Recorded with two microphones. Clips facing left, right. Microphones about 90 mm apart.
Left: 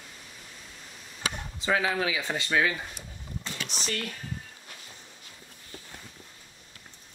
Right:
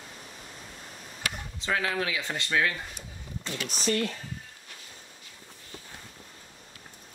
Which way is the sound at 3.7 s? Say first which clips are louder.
Right 8 dB; 40° right (ahead or behind).